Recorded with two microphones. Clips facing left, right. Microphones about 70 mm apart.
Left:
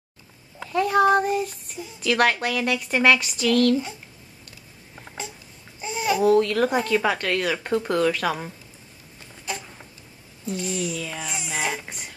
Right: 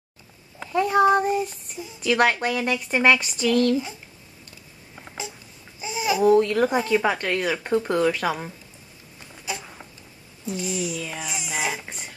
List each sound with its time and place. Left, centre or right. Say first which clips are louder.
0.6 s speech: even; centre
5.8 s babbling: even; centre
6.3 s speech: right 1 dB; centre
6.6 s speech: right 1 dB; centre
7.4 s speech: right 1 dB; centre
10.4 s speech: even; centre